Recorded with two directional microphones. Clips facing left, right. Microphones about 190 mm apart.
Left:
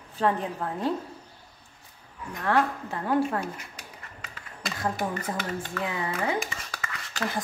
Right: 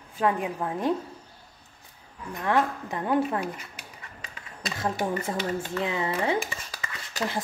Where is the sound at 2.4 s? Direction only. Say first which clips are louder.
Even; 15° right (ahead or behind).